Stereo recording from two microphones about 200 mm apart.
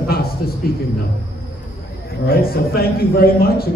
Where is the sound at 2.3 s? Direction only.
50° left (ahead or behind).